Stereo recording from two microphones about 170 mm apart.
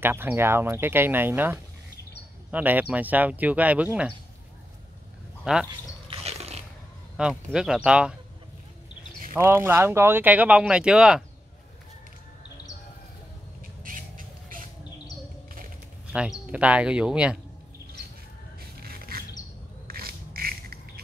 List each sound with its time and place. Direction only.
0.0 s speech: 15° right (ahead or behind)
5.4 s speech: 5° right (ahead or behind)
6.0 s roaring cats: 35° right (ahead or behind)
7.2 s speech: 5° right (ahead or behind)
9.3 s speech: 15° right (ahead or behind)
13.8 s bird: 55° right (ahead or behind)
16.1 s speech: 5° right (ahead or behind)
18.8 s a sound: 60° right (ahead or behind)